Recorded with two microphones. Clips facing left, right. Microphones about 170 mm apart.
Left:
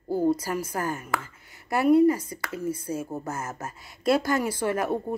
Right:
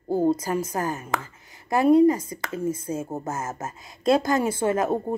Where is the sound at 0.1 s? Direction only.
20° right (ahead or behind).